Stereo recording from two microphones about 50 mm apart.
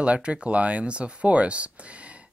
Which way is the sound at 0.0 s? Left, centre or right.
Right.